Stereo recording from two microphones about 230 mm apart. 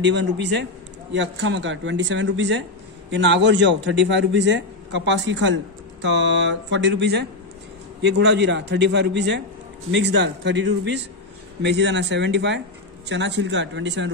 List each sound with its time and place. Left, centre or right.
0.0 s a man's voice: right